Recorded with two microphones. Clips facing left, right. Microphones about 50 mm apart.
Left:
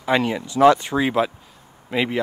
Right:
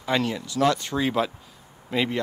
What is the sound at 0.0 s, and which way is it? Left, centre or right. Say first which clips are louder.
Speech: left 5 dB; centre.